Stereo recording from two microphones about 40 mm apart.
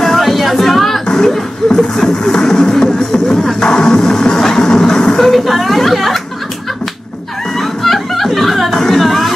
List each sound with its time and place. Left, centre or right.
0.0 s music: centre
1.0 s music: centre
5.2 s a sound: centre
7.5 s music: centre